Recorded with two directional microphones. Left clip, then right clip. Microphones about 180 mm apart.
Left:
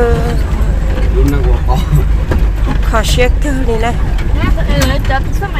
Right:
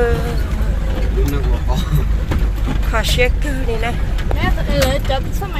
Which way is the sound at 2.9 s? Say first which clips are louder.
Left 4 dB; 20° left (ahead or behind).